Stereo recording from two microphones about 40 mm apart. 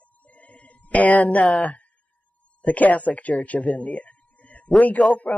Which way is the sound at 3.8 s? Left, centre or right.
Left.